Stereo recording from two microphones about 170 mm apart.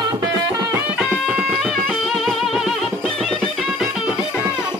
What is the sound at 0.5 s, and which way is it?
Music, 15° right (ahead or behind).